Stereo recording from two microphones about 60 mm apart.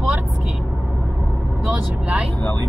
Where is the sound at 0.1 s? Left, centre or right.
Right.